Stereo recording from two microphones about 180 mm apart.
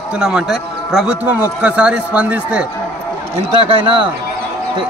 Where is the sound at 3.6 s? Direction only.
30° right (ahead or behind).